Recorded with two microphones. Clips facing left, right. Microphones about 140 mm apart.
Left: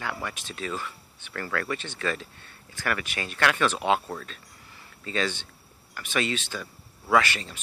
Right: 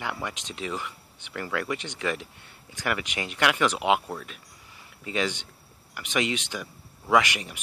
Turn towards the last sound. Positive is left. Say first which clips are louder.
# even
turn(degrees=-15)  # may be behind; listen again after turning